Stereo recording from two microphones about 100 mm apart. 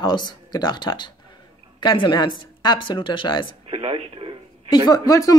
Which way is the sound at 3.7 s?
65° right (ahead or behind).